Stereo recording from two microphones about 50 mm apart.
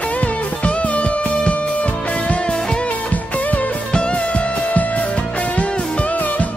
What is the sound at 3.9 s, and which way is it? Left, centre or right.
Music, left.